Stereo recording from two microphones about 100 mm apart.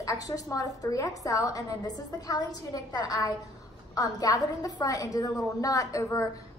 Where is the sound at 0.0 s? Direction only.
35° left (ahead or behind).